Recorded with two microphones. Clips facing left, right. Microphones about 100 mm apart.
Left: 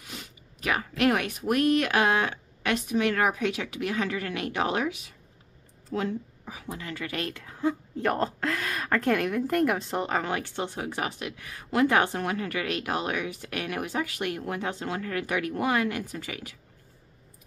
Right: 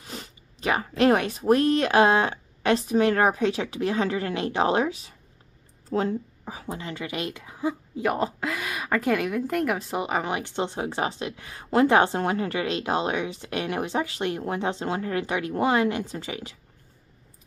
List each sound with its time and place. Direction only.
0.0 s a woman's voice: 35° right (ahead or behind)